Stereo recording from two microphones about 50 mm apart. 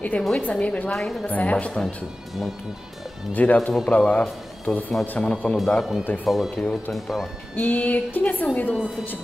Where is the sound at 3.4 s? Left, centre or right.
Left.